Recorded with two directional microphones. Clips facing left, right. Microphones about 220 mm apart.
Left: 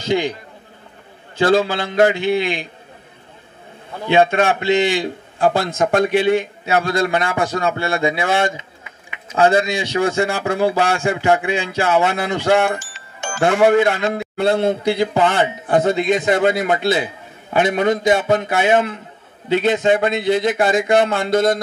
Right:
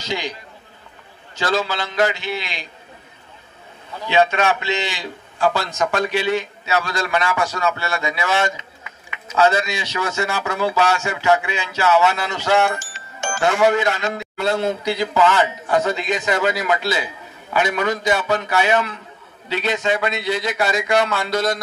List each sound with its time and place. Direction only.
0.0 s a man's voice: 55° left (ahead or behind)
3.9 s a man's voice: 50° left (ahead or behind)
12.7 s music: 45° right (ahead or behind)
13.4 s a man's voice: 50° left (ahead or behind)